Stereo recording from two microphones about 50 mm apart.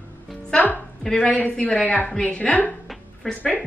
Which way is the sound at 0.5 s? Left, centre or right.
Left.